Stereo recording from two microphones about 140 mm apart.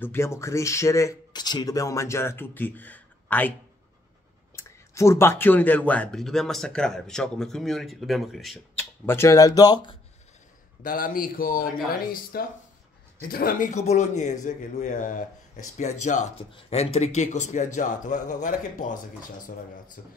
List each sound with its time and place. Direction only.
0.0 s speech: 20° left (ahead or behind)
4.6 s speech: 20° left (ahead or behind); by 8.5 s centre (ahead or behind)
8.7 s speech: 15° left (ahead or behind)
10.8 s a man's voice: 90° left; by 16.3 s 60° left (ahead or behind)
16.5 s a man's voice: 45° left (ahead or behind); by 18.9 s 65° left (ahead or behind)
20.0 s speech: 90° left